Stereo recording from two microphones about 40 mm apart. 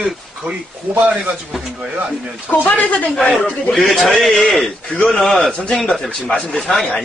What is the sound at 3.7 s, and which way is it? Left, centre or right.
A man's voice, centre.